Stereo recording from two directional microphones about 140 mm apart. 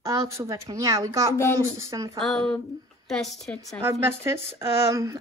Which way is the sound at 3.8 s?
15° right (ahead or behind).